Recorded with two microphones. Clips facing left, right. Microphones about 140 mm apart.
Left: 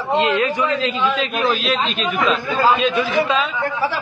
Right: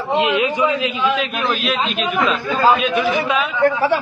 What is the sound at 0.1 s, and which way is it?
Speech, 15° right (ahead or behind).